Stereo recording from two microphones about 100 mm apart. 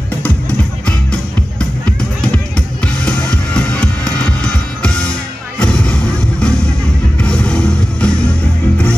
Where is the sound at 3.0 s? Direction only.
10° left (ahead or behind).